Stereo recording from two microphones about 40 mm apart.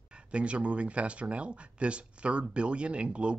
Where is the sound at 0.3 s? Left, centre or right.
Right.